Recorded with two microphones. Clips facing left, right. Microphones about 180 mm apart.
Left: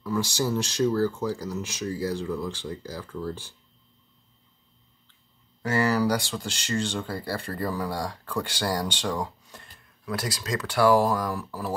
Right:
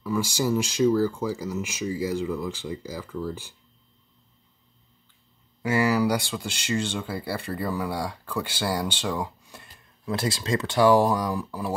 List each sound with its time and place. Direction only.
0.0 s speech: 10° right (ahead or behind)
5.6 s speech: 10° right (ahead or behind)
10.0 s speech: 25° right (ahead or behind)